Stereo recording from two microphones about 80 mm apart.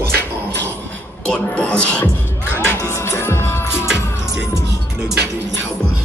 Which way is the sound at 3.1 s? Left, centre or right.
Left.